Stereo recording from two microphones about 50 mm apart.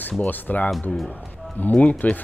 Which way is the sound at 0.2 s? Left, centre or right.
Left.